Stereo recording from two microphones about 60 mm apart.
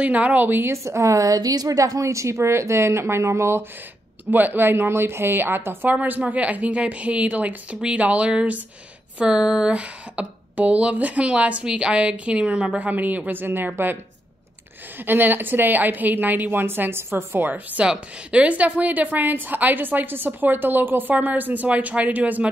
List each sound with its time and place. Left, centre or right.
0.0 s a woman's voice: right
0.5 s a woman's voice: right
0.8 s a woman's voice: right
4.3 s a woman's voice: right
12.8 s a woman's voice: right
15.0 s a woman's voice: right
17.7 s a woman's voice: right